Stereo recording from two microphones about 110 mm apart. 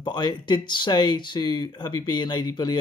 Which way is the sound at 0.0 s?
40° left (ahead or behind).